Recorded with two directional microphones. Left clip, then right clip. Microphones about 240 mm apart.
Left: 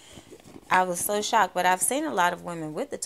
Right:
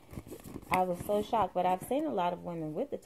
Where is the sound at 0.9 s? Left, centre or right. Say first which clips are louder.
Left 6 dB; left.